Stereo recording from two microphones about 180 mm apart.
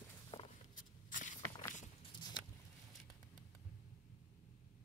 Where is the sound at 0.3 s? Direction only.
25° left (ahead or behind).